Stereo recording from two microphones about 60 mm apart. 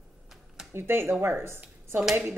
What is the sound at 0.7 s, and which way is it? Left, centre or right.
Speech, right.